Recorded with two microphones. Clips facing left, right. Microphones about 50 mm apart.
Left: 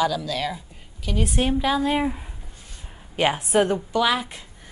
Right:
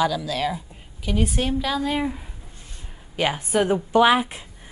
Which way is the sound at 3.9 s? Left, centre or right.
Right.